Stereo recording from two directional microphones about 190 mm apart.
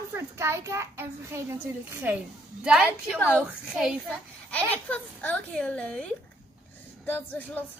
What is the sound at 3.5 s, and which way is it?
A child's voice, centre (ahead or behind).